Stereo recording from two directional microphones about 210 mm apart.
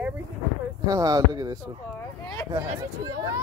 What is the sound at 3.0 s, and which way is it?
Speech, 15° right (ahead or behind).